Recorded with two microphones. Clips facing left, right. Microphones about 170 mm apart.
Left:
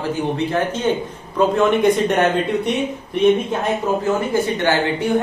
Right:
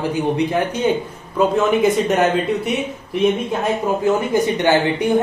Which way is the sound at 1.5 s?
Centre (ahead or behind).